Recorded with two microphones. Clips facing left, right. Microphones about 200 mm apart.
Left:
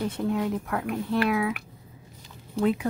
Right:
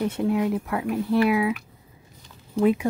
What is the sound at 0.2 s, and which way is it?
Speech, 10° right (ahead or behind).